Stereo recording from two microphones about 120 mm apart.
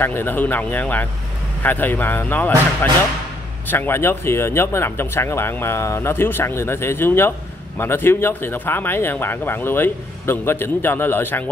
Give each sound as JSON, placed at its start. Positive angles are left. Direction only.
{"t": 0.0, "sound": "speech", "side_deg": 15}